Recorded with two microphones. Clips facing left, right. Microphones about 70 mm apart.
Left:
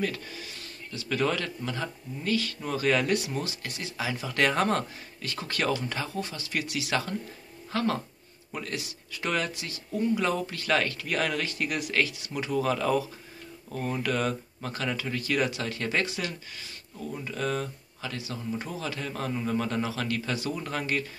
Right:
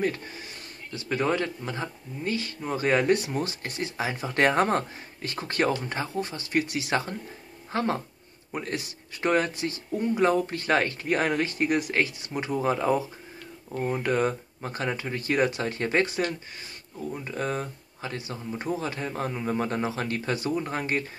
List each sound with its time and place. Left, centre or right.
0.0 s speech: right